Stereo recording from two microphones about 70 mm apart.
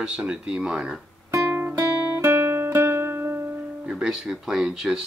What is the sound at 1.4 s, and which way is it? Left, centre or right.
Guitar, right.